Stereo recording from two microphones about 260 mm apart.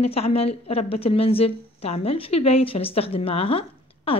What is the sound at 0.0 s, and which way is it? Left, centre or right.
A woman's voice, left.